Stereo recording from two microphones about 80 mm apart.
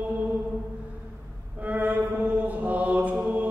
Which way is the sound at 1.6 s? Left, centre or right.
Right.